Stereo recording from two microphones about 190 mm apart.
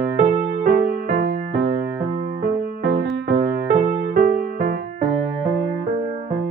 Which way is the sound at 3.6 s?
45° right (ahead or behind).